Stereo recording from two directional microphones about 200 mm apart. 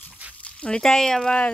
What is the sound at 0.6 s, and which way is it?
Speech, 5° left (ahead or behind).